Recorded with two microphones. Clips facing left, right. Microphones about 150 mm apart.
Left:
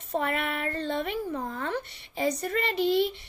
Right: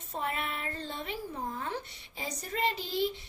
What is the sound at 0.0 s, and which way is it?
A woman's voice, 70° left (ahead or behind).